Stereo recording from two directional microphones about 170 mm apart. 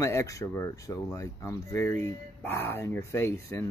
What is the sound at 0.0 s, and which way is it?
Speech, 15° left (ahead or behind).